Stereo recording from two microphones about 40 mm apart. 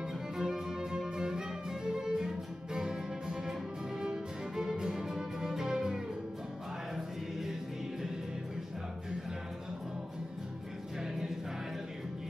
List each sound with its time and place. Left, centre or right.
0.4 s music: centre
11.0 s music: centre